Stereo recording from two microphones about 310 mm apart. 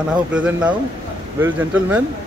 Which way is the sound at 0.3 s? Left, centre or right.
Centre.